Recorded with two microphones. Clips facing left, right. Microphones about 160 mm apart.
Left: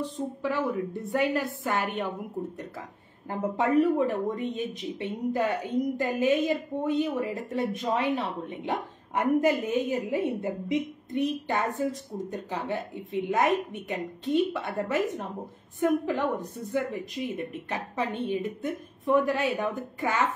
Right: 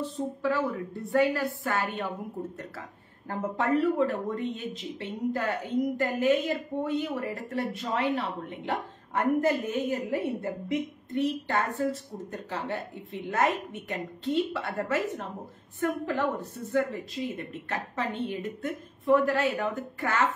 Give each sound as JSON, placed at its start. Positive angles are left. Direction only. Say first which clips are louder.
{"t": 0.4, "sound": "a woman's voice", "louder": "even", "side_deg": 20}
{"t": 3.3, "sound": "a woman's voice", "louder": "left 1 dB", "side_deg": 15}